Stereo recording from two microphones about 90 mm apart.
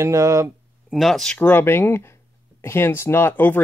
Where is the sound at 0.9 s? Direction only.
Centre (ahead or behind).